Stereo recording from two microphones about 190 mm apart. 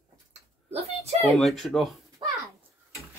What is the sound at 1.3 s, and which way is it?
Speech, centre (ahead or behind).